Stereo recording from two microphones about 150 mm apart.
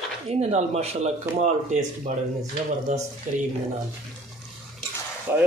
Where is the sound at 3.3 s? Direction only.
55° right (ahead or behind).